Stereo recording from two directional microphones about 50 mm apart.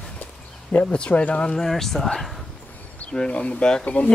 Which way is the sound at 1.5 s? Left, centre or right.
Centre.